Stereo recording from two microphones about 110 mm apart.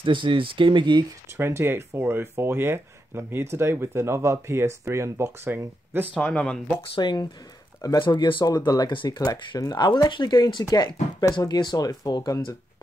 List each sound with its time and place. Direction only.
0.0 s speech: 50° right (ahead or behind)
1.3 s speech: 25° right (ahead or behind)
6.1 s speech: 10° left (ahead or behind)
7.0 s speech: 40° left (ahead or behind)